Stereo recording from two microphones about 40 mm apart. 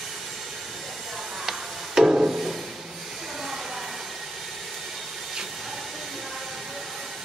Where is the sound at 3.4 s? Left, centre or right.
Centre.